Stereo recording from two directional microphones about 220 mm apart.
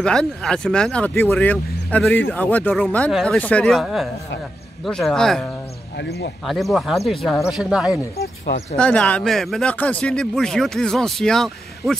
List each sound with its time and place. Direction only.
0.0 s speech: 5° left (ahead or behind)
5.9 s speech: 50° left (ahead or behind)
6.4 s speech: centre (ahead or behind)